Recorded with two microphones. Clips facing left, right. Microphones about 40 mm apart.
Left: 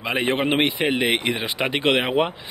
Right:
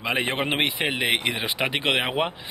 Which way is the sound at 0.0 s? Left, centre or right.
Centre.